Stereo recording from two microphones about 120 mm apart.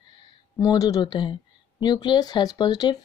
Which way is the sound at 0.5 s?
30° left (ahead or behind).